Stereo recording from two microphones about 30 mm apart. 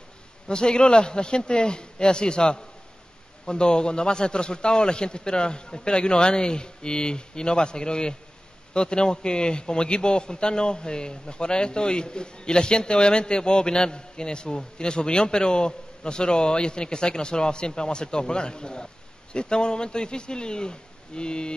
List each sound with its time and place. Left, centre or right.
0.5 s a man's voice: left